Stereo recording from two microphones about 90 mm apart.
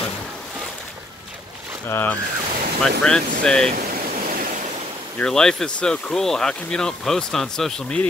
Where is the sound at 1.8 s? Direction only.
25° left (ahead or behind).